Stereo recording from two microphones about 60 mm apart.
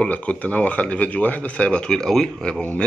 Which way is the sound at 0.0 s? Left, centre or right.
Left.